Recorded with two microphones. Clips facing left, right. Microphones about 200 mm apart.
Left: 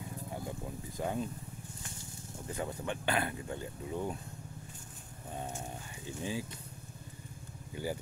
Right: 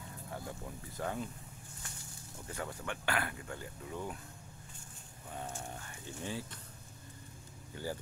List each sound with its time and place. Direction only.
0.3 s a sound: 15° left (ahead or behind)
2.5 s speech: 20° left (ahead or behind)
5.3 s speech: 20° left (ahead or behind)
7.7 s speech: 15° left (ahead or behind)